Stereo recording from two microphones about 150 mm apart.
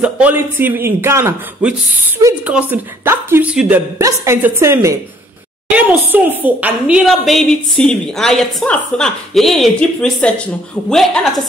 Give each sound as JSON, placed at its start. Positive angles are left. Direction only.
{"t": 0.0, "sound": "a man's voice", "side_deg": -10}